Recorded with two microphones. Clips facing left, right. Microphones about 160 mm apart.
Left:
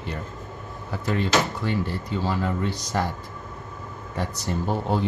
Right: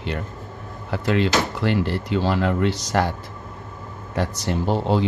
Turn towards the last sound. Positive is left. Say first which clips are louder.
# right 4 dB
turn(degrees=-90)